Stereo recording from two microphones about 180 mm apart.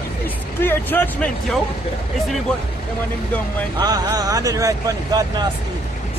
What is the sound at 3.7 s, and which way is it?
Speech, 20° right (ahead or behind).